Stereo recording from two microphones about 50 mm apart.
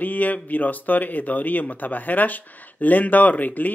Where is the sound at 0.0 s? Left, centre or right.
Left.